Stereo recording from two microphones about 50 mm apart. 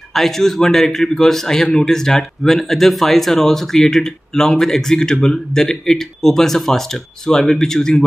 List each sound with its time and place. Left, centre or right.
0.1 s a man's voice: centre